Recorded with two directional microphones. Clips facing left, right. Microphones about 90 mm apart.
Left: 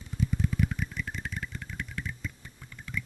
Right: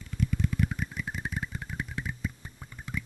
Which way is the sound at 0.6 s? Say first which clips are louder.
Even; 5° right (ahead or behind).